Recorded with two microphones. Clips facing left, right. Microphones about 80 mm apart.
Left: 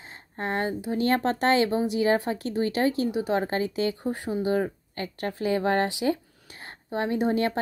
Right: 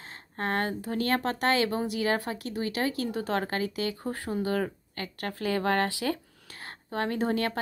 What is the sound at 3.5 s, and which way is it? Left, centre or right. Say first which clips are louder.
Speech: left 4 dB; left.